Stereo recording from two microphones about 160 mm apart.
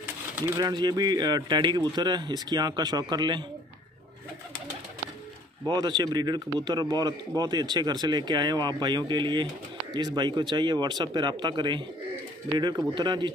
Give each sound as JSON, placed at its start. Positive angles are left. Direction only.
{"t": 0.6, "sound": "a man's voice", "side_deg": -25}
{"t": 5.7, "sound": "a man's voice", "side_deg": -25}